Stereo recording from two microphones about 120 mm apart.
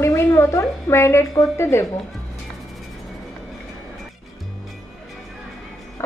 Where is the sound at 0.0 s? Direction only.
25° left (ahead or behind).